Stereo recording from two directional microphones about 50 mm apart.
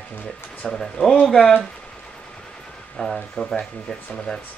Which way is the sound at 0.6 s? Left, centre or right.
Centre.